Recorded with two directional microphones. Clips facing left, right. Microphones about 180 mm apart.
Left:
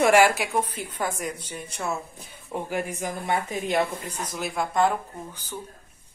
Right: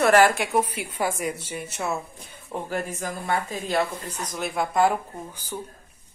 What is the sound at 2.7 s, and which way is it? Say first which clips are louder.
Speech: even; 15° left (ahead or behind).